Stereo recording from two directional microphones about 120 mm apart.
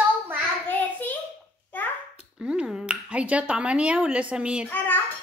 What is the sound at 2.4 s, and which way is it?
Speech, 10° right (ahead or behind).